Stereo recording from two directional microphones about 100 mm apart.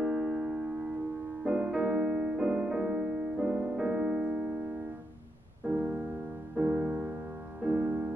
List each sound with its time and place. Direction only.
0.0 s music: 5° right (ahead or behind)
5.7 s music: 20° right (ahead or behind)